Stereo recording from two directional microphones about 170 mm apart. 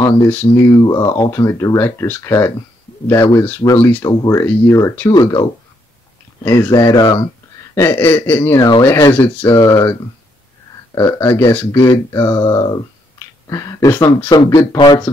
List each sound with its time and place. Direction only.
0.4 s speech: 25° left (ahead or behind)
5.1 s speech: 25° left (ahead or behind)
7.7 s speech: 15° left (ahead or behind)
11.0 s speech: 15° left (ahead or behind)